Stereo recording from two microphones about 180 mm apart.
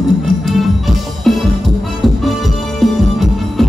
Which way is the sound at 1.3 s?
Centre (ahead or behind).